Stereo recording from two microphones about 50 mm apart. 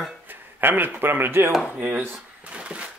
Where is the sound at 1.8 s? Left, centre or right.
Right.